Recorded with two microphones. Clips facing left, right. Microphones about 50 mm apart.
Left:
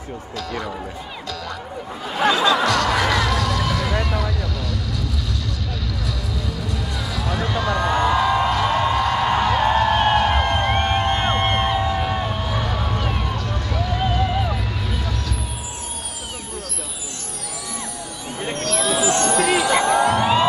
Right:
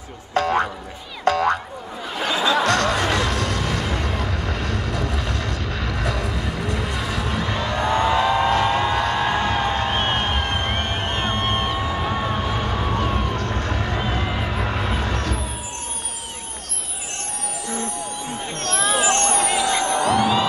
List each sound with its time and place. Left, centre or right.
0.3 s speech: right
2.6 s music: right
5.8 s a sound: right
9.8 s music: right
10.2 s music: left
11.8 s a sound: right
18.6 s a sound: right
19.8 s music: left
20.1 s music: left